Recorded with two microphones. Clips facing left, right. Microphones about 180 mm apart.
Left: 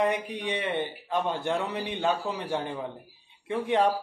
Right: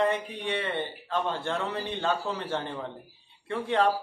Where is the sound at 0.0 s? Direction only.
15° left (ahead or behind).